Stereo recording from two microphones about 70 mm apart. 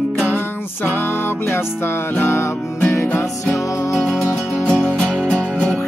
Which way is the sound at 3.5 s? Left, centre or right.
Left.